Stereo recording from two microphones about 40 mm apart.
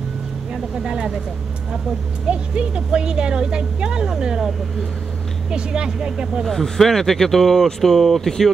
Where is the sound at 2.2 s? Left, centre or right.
Right.